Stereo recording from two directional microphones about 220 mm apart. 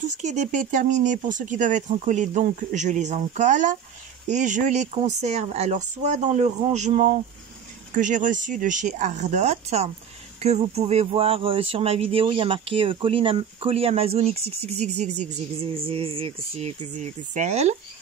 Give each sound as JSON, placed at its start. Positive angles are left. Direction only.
{"t": 0.1, "sound": "speech", "side_deg": -35}